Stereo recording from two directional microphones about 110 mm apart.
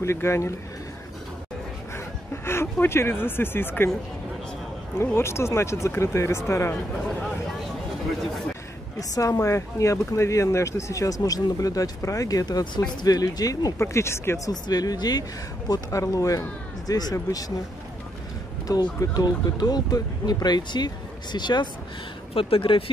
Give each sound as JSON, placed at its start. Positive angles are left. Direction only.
{"t": 0.0, "sound": "speech", "side_deg": 25}
{"t": 2.4, "sound": "speech", "side_deg": 20}
{"t": 4.9, "sound": "speech", "side_deg": 20}
{"t": 9.1, "sound": "speech", "side_deg": 30}
{"t": 18.7, "sound": "speech", "side_deg": 35}
{"t": 22.3, "sound": "speech", "side_deg": 55}